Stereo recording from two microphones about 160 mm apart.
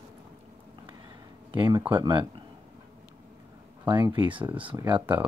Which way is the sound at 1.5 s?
30° right (ahead or behind).